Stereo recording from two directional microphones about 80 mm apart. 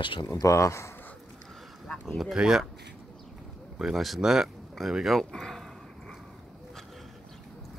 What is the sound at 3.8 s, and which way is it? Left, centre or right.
Speech, centre.